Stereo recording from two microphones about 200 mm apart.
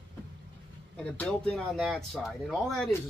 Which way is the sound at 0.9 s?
5° left (ahead or behind).